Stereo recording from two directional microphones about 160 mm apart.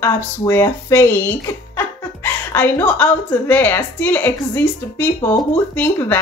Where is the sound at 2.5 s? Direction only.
10° left (ahead or behind).